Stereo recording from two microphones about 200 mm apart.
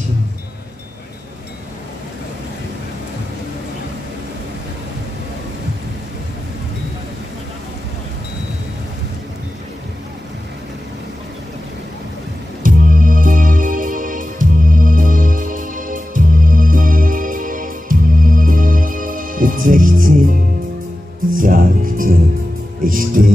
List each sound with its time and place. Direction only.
12.6 s music: 45° right (ahead or behind)
21.4 s music: 45° right (ahead or behind)